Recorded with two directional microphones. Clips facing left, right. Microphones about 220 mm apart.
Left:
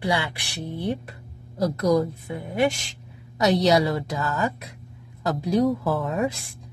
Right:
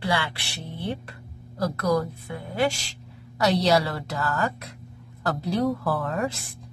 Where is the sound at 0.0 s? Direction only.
20° left (ahead or behind).